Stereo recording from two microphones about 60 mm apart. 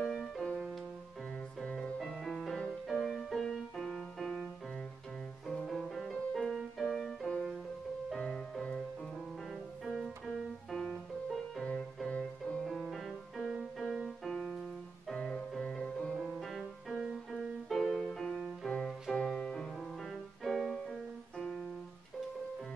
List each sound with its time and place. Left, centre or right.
0.0 s music: centre
1.6 s music: centre
5.7 s music: centre
9.8 s piano: centre
12.1 s music: centre
12.6 s music: centre
15.0 s music: centre
16.2 s music: centre
20.1 s music: centre